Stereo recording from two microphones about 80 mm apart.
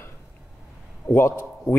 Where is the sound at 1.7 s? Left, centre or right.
Left.